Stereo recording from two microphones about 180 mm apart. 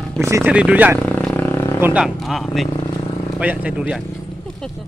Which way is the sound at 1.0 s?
10° left (ahead or behind).